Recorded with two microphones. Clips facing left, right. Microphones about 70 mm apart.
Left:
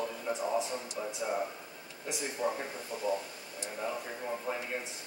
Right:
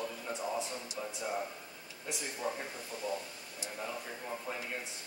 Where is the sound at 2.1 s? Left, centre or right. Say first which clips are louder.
Left 4 dB; centre.